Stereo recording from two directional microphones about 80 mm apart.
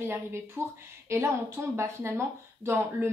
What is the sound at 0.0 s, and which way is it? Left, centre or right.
A woman's voice, right.